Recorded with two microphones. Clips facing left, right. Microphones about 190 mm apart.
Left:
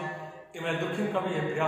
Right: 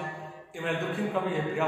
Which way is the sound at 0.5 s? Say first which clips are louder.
Even; centre (ahead or behind).